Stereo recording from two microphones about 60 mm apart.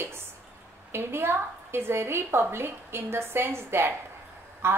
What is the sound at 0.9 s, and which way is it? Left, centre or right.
A woman's voice, right.